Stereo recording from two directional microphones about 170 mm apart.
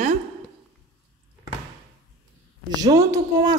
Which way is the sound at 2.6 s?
25° right (ahead or behind).